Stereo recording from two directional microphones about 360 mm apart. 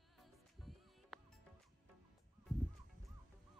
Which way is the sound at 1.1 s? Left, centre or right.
Centre.